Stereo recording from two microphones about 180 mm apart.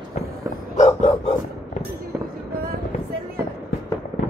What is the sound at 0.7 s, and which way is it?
Dog, 40° left (ahead or behind).